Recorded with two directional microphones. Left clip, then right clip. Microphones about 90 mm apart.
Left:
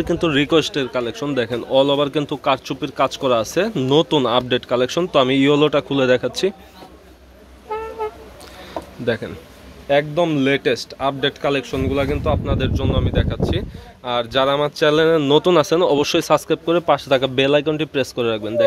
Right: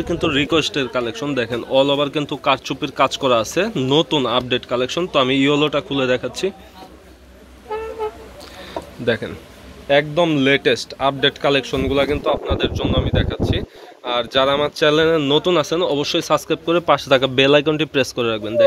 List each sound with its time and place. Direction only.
0.0 s speech: 50° left (ahead or behind)
0.7 s speech: 25° left (ahead or behind)
3.6 s speech: 35° left (ahead or behind)
4.1 s speech: 50° left (ahead or behind)
5.1 s speech: 40° left (ahead or behind)
8.7 s a sound: 15° left (ahead or behind)
9.8 s speech: 10° left (ahead or behind)
13.4 s speech: 25° left (ahead or behind)
15.1 s speech: 45° left (ahead or behind)
16.3 s speech: 25° left (ahead or behind)
16.8 s speech: centre (ahead or behind)
18.1 s speech: 25° left (ahead or behind)